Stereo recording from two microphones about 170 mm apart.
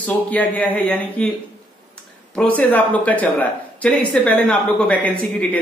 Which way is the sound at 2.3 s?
10° left (ahead or behind).